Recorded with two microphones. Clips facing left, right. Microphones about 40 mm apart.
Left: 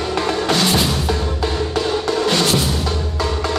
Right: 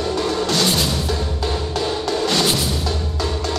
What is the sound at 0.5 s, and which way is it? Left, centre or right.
Music, left.